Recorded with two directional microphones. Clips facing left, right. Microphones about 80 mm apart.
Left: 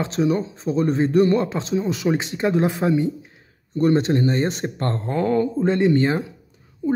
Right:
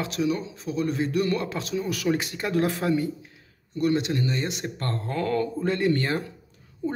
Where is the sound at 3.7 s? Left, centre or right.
Left.